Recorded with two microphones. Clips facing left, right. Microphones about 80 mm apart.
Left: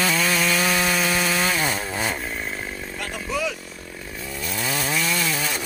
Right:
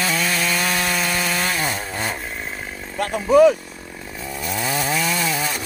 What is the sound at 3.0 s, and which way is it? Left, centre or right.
Vehicle, right.